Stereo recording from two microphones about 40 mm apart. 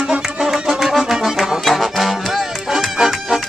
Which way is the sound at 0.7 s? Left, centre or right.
Centre.